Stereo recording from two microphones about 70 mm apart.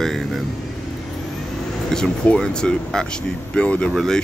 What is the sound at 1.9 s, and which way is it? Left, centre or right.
Speech, centre.